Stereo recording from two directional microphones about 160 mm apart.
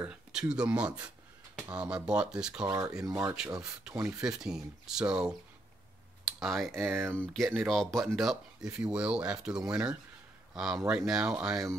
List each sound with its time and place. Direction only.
0.0 s speech: 5° right (ahead or behind)
2.6 s speech: 25° right (ahead or behind)
4.2 s speech: 5° right (ahead or behind)
6.9 s speech: 10° right (ahead or behind)
7.2 s speech: centre (ahead or behind)